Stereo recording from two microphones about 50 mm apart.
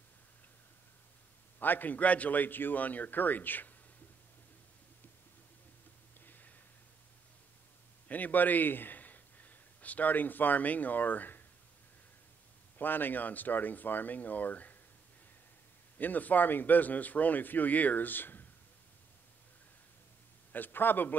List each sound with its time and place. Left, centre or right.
1.6 s speech: left
6.2 s a sound: left
8.1 s a man's voice: left
12.7 s speech: left
16.0 s speech: left
20.5 s speech: left